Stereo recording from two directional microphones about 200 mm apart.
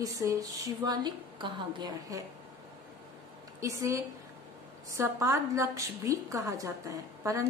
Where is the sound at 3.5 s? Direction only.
15° right (ahead or behind).